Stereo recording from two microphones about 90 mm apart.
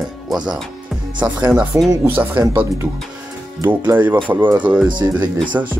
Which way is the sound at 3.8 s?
20° right (ahead or behind).